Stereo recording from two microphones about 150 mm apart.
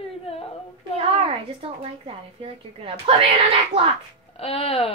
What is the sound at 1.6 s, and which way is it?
A woman's voice, 35° right (ahead or behind).